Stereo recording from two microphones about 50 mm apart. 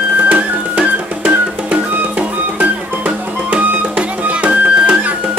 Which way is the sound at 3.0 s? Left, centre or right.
Right.